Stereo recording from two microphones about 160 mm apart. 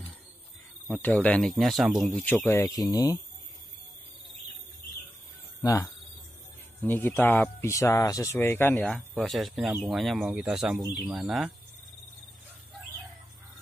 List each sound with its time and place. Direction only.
0.8 s speech: 10° left (ahead or behind)
2.5 s speech: 20° left (ahead or behind)
5.6 s speech: 20° left (ahead or behind); by 11.5 s 5° right (ahead or behind)